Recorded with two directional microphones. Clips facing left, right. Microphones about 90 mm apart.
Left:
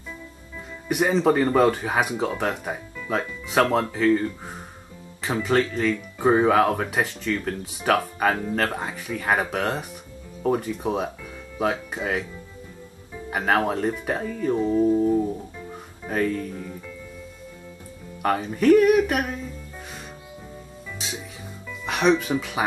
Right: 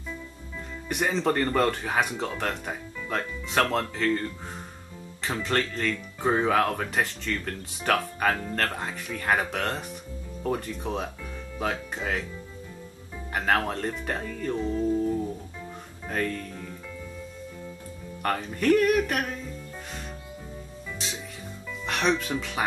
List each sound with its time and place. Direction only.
0.8 s speech: 5° left (ahead or behind)
16.0 s speech: 5° left (ahead or behind)
18.2 s speech: 5° left (ahead or behind)
21.6 s speech: 5° left (ahead or behind)